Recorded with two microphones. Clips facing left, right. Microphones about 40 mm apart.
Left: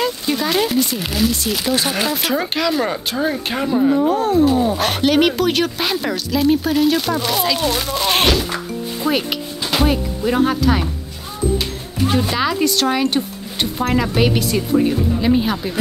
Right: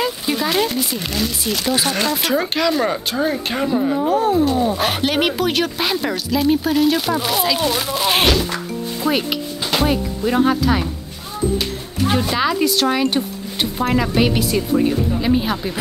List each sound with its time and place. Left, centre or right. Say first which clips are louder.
0.0 s speech: left 1 dB; centre
12.1 s speech: right 1 dB; centre